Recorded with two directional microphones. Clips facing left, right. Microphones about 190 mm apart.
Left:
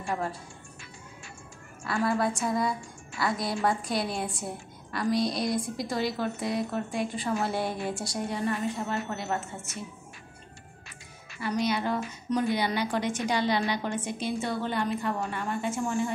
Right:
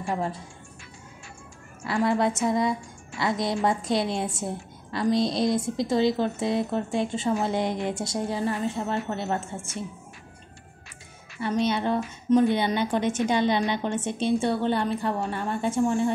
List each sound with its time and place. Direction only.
1.9 s a woman's voice: 20° right (ahead or behind)
11.4 s a woman's voice: 25° right (ahead or behind)